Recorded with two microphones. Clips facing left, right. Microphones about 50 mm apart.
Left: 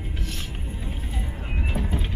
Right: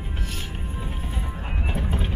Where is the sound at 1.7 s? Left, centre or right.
Right.